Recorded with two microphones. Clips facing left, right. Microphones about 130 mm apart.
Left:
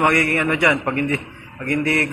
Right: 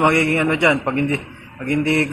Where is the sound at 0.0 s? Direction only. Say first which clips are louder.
Right 2 dB; 25° right (ahead or behind).